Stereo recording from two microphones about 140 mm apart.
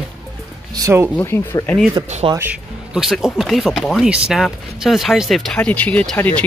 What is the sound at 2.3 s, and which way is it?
Speech, 15° right (ahead or behind).